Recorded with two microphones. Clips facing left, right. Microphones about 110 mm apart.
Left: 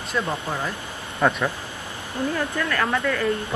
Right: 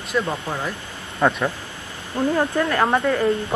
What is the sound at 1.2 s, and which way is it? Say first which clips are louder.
Speech: right 2 dB; 10° right (ahead or behind).